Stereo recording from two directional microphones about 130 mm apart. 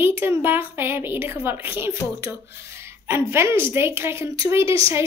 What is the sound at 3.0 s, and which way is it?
A woman's voice, 20° right (ahead or behind).